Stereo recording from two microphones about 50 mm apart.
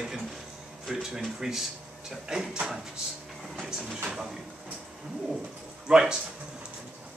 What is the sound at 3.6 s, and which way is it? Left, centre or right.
Speech, centre.